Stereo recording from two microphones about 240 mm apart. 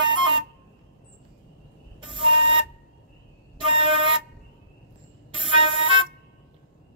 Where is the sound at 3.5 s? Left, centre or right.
Right.